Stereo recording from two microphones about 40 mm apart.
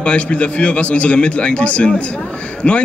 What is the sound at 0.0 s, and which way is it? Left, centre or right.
A man's voice, left.